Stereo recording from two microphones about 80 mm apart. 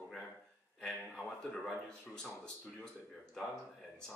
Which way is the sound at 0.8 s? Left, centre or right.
Centre.